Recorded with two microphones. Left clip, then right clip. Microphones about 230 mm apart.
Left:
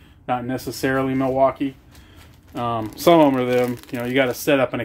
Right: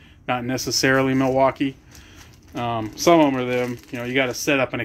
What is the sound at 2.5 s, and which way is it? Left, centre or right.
Speech, centre.